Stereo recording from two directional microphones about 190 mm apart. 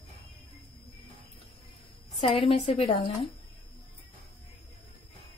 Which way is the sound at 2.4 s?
30° left (ahead or behind).